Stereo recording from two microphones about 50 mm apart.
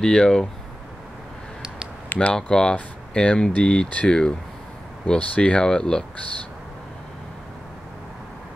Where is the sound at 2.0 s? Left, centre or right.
Left.